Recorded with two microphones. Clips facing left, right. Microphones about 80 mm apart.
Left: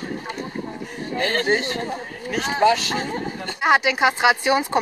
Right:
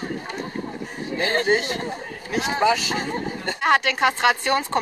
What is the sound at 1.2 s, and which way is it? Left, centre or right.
A woman's voice, centre.